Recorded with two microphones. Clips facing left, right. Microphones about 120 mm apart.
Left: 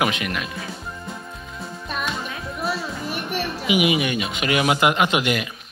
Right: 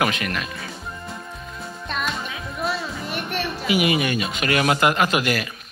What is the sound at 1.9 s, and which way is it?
Music, 5° left (ahead or behind).